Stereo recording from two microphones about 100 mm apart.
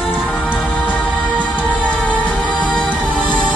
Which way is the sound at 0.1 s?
15° left (ahead or behind).